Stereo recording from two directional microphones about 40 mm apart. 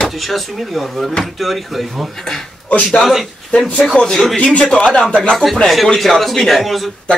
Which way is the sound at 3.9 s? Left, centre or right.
Centre.